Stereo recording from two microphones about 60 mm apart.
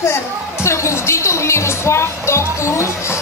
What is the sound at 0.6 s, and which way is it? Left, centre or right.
Music, left.